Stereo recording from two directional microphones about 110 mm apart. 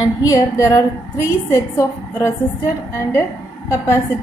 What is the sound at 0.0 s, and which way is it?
A woman's voice, 30° left (ahead or behind).